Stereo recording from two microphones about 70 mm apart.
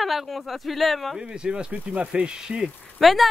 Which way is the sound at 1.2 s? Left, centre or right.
Centre.